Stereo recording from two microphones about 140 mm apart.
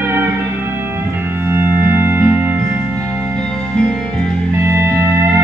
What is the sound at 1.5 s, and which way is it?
Music, 15° right (ahead or behind).